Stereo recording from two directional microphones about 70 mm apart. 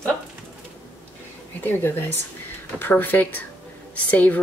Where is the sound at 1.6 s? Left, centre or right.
Left.